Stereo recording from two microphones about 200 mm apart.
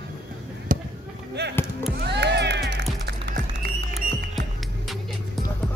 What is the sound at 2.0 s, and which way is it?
Music, 60° right (ahead or behind).